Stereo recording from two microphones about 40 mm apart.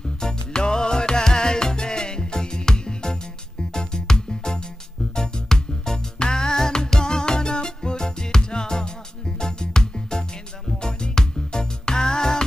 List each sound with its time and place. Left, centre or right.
0.2 s music: centre